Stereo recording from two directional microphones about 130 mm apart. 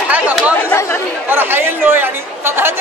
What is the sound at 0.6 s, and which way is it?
Chatter, 15° left (ahead or behind).